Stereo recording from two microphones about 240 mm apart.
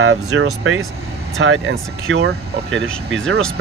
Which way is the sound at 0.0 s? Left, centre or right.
Right.